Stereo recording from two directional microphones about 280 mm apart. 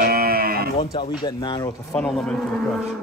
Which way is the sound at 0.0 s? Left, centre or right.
Right.